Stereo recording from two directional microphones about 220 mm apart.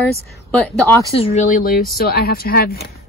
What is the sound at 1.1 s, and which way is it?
Speech, 30° left (ahead or behind).